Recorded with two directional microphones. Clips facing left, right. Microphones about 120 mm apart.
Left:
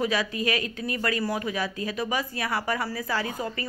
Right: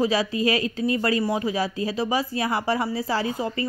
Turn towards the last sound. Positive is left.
turn(degrees=-25)  # may be behind; listen again after turning